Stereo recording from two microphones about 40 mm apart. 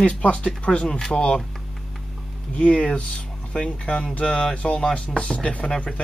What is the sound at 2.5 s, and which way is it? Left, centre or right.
Speech, left.